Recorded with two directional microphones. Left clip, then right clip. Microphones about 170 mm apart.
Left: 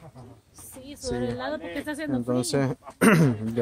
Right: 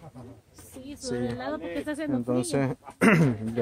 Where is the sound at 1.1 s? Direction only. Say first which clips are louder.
Left 1 dB; 85° left.